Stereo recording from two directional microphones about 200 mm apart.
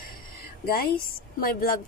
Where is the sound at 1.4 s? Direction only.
45° left (ahead or behind).